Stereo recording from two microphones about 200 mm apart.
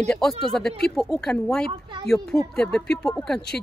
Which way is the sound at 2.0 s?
Centre (ahead or behind).